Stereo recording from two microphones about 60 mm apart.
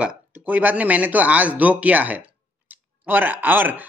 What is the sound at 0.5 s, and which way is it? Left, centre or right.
Speech, right.